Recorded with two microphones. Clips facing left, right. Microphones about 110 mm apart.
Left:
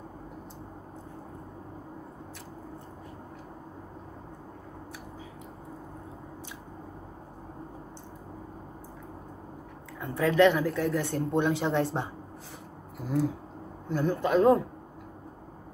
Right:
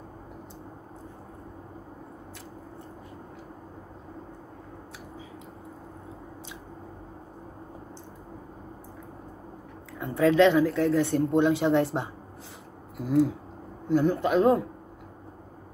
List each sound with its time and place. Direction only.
9.9 s speech: 15° right (ahead or behind)
10.6 s speech: 5° left (ahead or behind)
11.1 s a man's voice: 15° right (ahead or behind)
13.8 s a man's voice: 15° right (ahead or behind)